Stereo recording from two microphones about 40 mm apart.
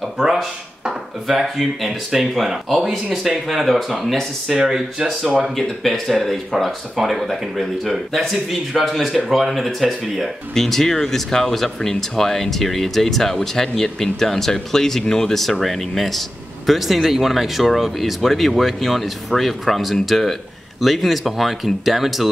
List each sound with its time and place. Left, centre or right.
0.2 s speech: centre
4.0 s speech: centre
4.6 s speech: centre
5.4 s speech: centre